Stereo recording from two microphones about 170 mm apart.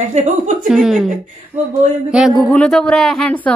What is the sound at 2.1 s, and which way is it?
Speech, centre (ahead or behind).